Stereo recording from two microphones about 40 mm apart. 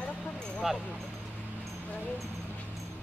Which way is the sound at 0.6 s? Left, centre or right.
Centre.